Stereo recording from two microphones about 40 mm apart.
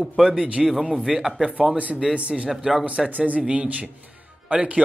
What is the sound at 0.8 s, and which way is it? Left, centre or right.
Speech, centre.